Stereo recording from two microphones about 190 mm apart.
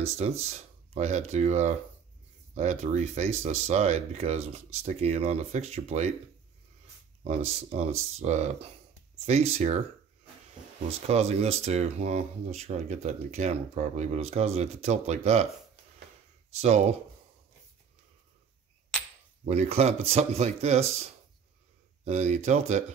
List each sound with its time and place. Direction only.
0.0 s speech: 35° right (ahead or behind)
7.2 s speech: 35° right (ahead or behind)
11.0 s speech: 35° right (ahead or behind)
16.6 s speech: 35° right (ahead or behind)
19.4 s speech: 35° right (ahead or behind)
22.0 s speech: 35° right (ahead or behind)